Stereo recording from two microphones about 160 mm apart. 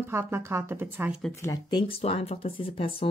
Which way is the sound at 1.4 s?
25° left (ahead or behind).